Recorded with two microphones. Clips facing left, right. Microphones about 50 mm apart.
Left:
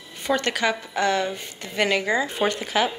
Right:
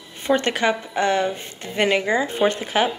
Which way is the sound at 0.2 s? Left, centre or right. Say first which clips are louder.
Right 3 dB; right.